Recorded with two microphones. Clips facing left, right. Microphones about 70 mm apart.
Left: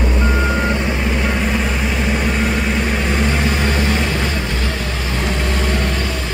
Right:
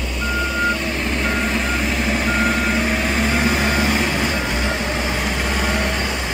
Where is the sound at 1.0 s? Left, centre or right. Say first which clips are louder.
Left 2 dB; centre.